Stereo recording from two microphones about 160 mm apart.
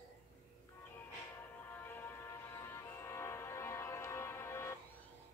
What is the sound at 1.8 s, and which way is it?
Music, 10° left (ahead or behind).